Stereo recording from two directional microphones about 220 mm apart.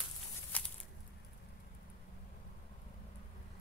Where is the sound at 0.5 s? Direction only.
5° left (ahead or behind).